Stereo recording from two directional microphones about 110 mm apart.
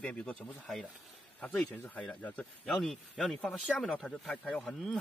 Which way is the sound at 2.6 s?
5° left (ahead or behind).